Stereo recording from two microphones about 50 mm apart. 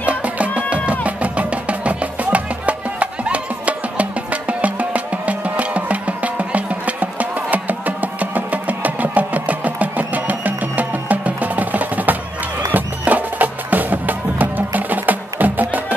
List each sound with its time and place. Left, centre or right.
0.0 s music: right